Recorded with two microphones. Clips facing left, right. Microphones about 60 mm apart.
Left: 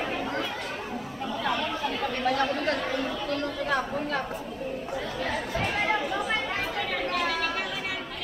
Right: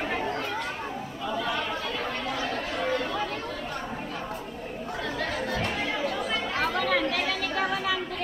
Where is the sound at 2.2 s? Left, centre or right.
Left.